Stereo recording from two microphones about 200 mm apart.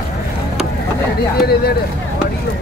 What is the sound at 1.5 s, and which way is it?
Speech, 50° left (ahead or behind).